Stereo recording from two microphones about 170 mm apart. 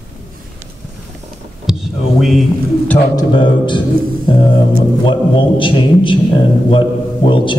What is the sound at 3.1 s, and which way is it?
Speech, 30° left (ahead or behind).